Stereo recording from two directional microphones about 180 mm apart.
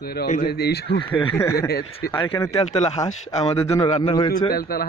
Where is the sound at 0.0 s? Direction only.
60° left (ahead or behind).